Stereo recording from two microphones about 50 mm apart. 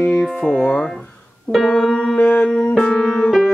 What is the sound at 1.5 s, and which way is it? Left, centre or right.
Keyboard, centre.